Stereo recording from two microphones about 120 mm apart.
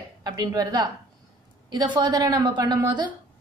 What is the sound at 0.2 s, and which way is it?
A woman's voice, 35° right (ahead or behind).